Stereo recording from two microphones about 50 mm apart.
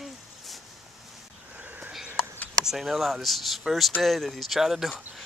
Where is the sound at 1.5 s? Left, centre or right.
Right.